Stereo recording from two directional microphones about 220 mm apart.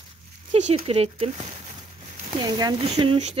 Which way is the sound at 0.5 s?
30° right (ahead or behind).